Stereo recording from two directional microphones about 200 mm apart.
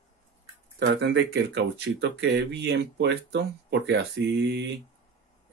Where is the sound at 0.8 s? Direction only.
55° right (ahead or behind).